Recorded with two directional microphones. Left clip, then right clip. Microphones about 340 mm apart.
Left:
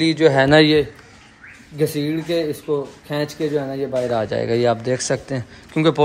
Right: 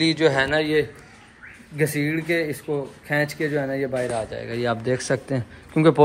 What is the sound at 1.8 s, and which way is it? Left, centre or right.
A man's voice, centre.